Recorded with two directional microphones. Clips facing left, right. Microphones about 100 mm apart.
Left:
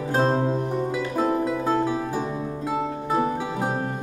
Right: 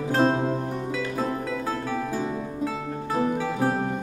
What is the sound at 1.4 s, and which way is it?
Music, 15° left (ahead or behind).